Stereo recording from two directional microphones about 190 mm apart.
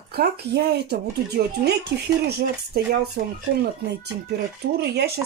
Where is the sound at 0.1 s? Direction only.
60° right (ahead or behind).